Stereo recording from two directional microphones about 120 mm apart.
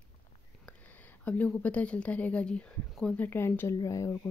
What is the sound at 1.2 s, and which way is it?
Speech, 10° left (ahead or behind).